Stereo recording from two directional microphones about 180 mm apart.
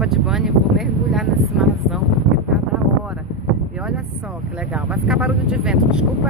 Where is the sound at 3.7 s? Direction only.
5° right (ahead or behind).